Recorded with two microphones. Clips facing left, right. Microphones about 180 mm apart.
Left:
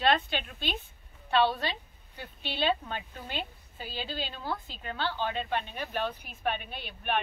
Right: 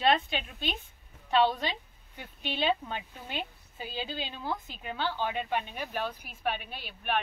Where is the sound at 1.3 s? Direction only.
20° right (ahead or behind).